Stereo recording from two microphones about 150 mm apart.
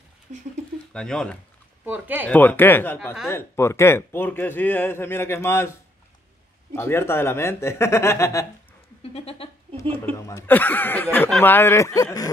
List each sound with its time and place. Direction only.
0.3 s speech: 50° right (ahead or behind)
0.9 s speech: 5° left (ahead or behind)
1.9 s speech: 10° right (ahead or behind)
2.2 s a man's voice: 10° left (ahead or behind)
9.0 s speech: 40° left (ahead or behind)
10.1 s a man's voice: 20° left (ahead or behind)